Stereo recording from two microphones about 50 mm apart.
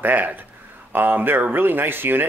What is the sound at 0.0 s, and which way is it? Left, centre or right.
A man's voice, right.